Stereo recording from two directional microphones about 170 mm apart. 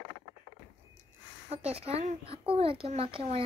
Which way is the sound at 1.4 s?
35° right (ahead or behind).